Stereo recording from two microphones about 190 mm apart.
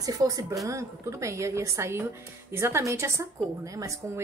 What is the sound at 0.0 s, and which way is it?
A woman's voice, 20° right (ahead or behind).